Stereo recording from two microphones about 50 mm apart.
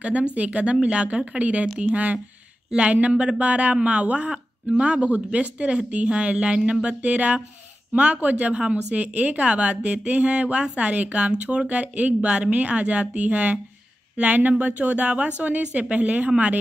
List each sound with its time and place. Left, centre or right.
0.0 s a woman's voice: right
0.7 s a woman's voice: centre